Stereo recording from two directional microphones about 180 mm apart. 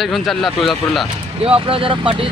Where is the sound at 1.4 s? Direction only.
30° right (ahead or behind).